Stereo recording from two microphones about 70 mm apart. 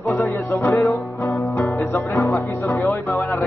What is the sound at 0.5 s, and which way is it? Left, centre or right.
Music, left.